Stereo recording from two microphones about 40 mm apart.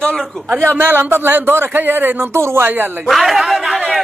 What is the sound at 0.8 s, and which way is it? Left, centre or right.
Speech, right.